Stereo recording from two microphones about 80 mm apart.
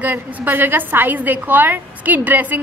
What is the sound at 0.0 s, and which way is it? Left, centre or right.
A woman's voice, right.